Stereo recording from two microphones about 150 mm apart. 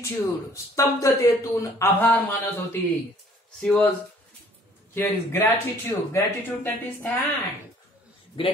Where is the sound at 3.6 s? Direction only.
10° left (ahead or behind).